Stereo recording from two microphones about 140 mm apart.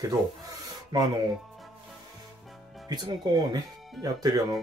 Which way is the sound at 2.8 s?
30° right (ahead or behind).